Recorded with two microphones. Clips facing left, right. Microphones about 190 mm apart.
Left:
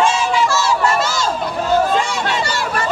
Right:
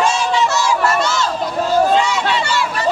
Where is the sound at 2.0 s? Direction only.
50° left (ahead or behind).